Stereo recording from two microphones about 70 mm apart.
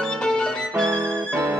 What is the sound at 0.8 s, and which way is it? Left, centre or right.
Music, right.